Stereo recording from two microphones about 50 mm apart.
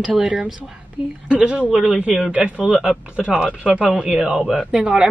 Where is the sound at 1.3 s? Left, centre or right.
Right.